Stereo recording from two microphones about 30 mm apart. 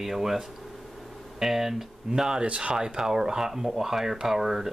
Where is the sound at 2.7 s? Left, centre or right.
Right.